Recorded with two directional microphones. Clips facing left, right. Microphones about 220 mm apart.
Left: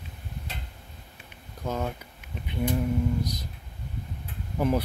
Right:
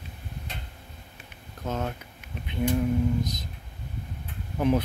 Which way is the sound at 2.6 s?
10° left (ahead or behind).